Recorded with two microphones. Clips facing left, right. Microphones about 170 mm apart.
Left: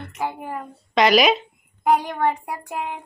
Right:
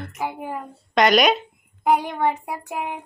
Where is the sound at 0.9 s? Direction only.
Centre (ahead or behind).